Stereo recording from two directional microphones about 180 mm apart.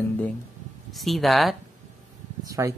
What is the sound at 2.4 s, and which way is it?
Speech, 20° right (ahead or behind).